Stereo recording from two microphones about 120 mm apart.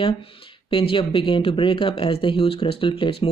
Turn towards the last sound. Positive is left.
turn(degrees=45)  # may be behind; listen again after turning